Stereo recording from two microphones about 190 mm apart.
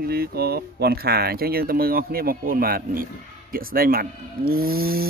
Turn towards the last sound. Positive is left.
turn(degrees=-50)  # may be behind; listen again after turning